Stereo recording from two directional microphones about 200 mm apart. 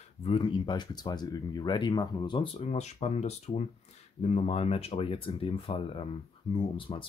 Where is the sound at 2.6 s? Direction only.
35° left (ahead or behind).